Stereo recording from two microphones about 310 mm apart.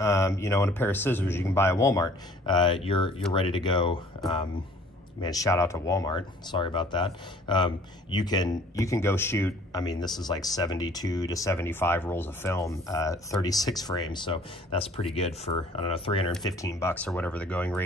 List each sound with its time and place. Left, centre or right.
0.0 s speech: centre
5.2 s speech: centre